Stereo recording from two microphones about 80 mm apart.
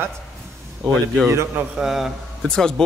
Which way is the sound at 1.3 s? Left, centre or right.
Right.